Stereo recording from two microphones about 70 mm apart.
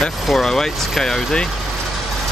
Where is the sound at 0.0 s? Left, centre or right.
Centre.